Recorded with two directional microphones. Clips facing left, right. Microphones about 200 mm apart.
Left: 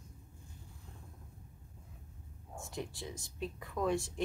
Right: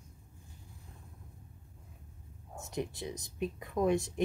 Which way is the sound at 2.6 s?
20° right (ahead or behind).